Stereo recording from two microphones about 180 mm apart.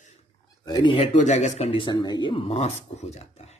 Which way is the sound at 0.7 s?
25° left (ahead or behind).